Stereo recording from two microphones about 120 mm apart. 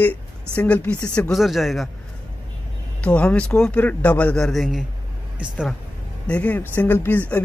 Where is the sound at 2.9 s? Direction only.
10° left (ahead or behind).